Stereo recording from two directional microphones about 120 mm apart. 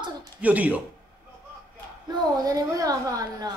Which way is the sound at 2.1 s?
30° right (ahead or behind).